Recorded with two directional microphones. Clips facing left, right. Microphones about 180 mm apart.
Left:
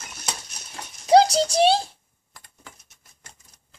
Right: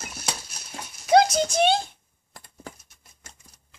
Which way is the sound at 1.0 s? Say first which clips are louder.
Left 2 dB; 35° left (ahead or behind).